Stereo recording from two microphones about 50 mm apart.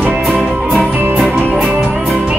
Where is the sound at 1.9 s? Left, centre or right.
Centre.